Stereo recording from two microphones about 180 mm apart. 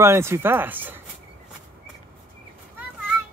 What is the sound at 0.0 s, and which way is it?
Speech, 15° right (ahead or behind).